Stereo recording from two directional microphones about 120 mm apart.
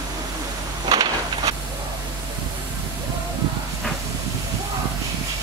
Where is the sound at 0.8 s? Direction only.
40° right (ahead or behind).